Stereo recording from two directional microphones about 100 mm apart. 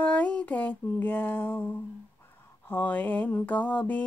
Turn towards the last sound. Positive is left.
turn(degrees=15)  # may be behind; listen again after turning